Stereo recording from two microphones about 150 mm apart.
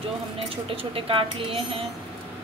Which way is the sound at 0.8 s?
35° right (ahead or behind).